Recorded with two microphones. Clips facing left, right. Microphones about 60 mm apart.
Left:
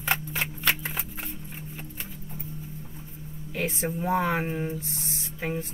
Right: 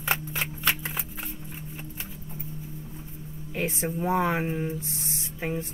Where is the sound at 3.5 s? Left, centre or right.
Centre.